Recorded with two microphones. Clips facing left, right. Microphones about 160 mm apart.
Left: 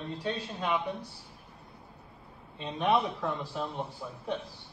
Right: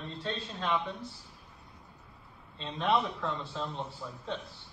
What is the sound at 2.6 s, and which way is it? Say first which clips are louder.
Speech: left 2 dB; 15° left (ahead or behind).